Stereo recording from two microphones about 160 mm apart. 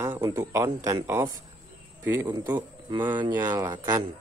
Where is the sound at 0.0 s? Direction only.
20° right (ahead or behind).